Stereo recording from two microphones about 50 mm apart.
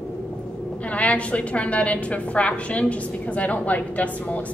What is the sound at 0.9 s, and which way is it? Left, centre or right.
A woman's voice, left.